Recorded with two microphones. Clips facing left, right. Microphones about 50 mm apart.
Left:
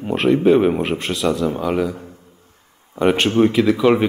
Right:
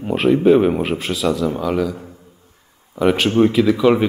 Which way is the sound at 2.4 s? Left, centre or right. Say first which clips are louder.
Even; left.